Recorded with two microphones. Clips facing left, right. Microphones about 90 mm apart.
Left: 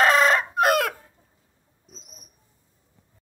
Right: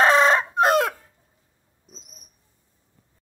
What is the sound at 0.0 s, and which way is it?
Chicken, 30° right (ahead or behind).